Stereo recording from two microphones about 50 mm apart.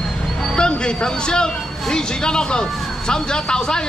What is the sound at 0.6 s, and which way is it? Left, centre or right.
Speech, centre.